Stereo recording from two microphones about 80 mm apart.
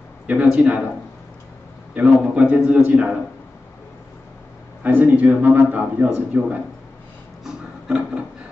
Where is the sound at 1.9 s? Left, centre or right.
Centre.